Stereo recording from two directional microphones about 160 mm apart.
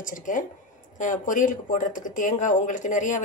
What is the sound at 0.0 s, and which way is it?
Speech, 55° left (ahead or behind).